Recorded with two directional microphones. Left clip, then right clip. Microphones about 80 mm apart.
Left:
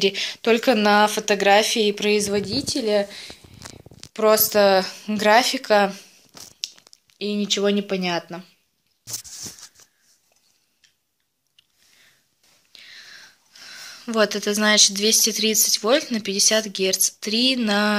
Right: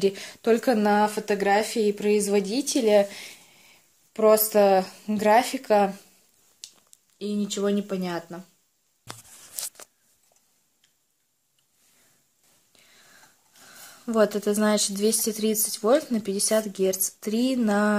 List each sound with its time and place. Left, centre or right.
0.0 s speech: centre
0.8 s speech: centre
2.0 s speech: centre
2.3 s speech: right
2.7 s a sound: right
4.1 s speech: right
7.2 s speech: left
12.7 s whispering: centre
13.7 s a sound: centre
14.1 s speech: right